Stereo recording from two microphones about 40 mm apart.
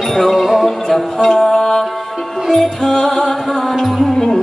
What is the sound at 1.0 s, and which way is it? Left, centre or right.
Music, centre.